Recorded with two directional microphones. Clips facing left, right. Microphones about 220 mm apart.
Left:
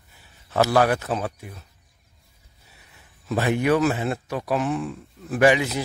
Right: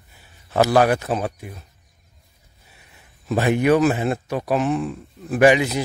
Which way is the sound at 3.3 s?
15° right (ahead or behind).